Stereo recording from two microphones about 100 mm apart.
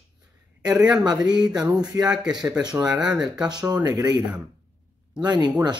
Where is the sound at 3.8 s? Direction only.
40° right (ahead or behind).